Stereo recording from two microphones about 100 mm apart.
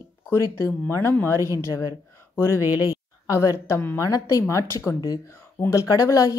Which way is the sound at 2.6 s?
20° right (ahead or behind).